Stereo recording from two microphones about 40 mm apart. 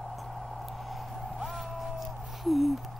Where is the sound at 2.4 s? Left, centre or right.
Centre.